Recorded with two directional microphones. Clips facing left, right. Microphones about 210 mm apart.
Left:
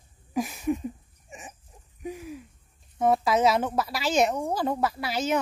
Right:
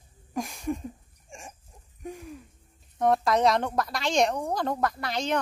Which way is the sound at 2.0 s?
5° left (ahead or behind).